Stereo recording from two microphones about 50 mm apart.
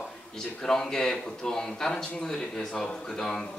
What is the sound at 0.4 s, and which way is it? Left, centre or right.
Speech, centre.